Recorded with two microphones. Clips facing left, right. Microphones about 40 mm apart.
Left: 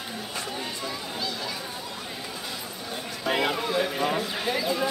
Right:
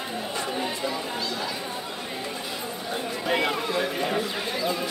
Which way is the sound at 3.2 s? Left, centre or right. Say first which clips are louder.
Even; centre.